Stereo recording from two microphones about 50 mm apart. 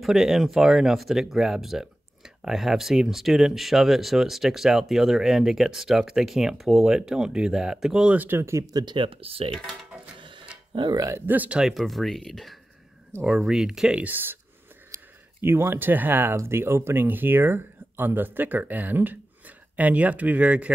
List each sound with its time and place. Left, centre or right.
0.0 s speech: centre
8.1 s speech: right
8.4 s speech: right
11.2 s speech: right
11.8 s speech: centre
14.1 s speech: right
15.4 s speech: right
16.3 s speech: right